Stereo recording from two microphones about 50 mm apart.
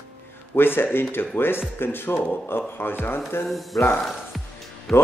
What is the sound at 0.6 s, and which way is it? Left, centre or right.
Speech, left.